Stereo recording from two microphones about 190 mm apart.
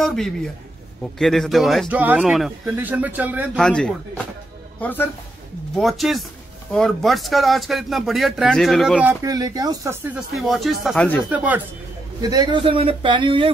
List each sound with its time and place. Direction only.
0.0 s speech: centre (ahead or behind)
3.5 s speech: 5° left (ahead or behind)
9.2 s speech: 20° right (ahead or behind)
10.1 s speech: centre (ahead or behind)
12.2 s speech: 20° right (ahead or behind)